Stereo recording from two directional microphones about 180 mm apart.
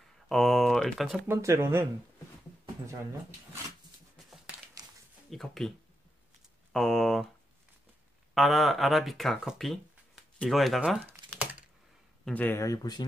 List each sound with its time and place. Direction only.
0.3 s speech: centre (ahead or behind)
1.2 s speech: 15° right (ahead or behind)
5.3 s speech: centre (ahead or behind)
6.7 s speech: centre (ahead or behind)
8.4 s speech: centre (ahead or behind)
12.3 s speech: 10° left (ahead or behind)